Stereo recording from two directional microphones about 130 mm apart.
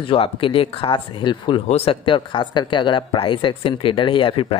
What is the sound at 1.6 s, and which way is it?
Speech, 50° left (ahead or behind).